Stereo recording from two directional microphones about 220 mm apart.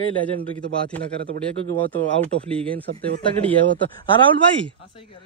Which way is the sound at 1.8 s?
5° left (ahead or behind).